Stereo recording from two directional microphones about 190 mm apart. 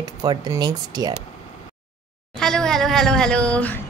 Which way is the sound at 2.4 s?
5° left (ahead or behind).